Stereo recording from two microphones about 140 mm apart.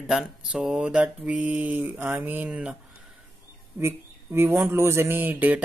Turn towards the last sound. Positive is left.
turn(degrees=-15)  # may be behind; listen again after turning